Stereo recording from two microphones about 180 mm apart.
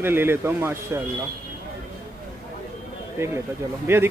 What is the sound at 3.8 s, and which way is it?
Speech, 15° right (ahead or behind).